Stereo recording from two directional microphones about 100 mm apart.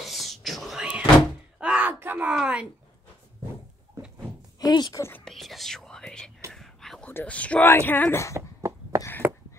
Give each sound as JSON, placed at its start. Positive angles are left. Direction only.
{"t": 0.0, "sound": "whispering", "side_deg": 0}
{"t": 1.6, "sound": "a sound", "side_deg": -15}
{"t": 2.3, "sound": "speech", "side_deg": -10}
{"t": 4.6, "sound": "speech", "side_deg": 45}
{"t": 4.9, "sound": "speech", "side_deg": 25}
{"t": 5.2, "sound": "whispering", "side_deg": 0}
{"t": 7.1, "sound": "speech", "side_deg": 15}
{"t": 8.4, "sound": "a sound", "side_deg": -30}